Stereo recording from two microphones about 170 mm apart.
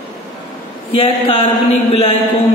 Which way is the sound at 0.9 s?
35° left (ahead or behind).